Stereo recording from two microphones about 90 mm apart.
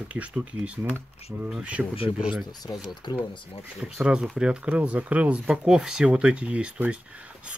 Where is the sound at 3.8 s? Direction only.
10° right (ahead or behind).